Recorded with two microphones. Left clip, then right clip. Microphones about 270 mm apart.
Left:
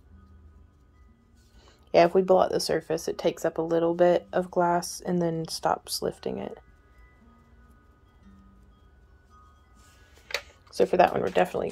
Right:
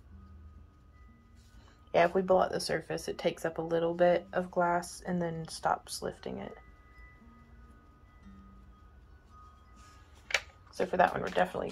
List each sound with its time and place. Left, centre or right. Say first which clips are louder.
1.7 s speech: left 7 dB; left
10.7 s speech: left 7 dB; left